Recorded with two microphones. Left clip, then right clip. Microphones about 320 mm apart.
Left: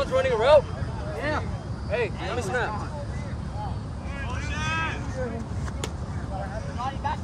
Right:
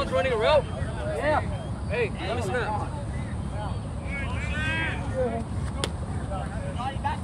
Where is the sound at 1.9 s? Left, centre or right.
Left.